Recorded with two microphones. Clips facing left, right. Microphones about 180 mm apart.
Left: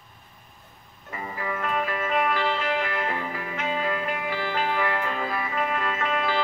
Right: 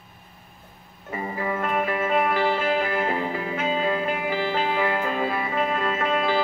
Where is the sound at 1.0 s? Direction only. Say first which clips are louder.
Right 4 dB; 25° right (ahead or behind).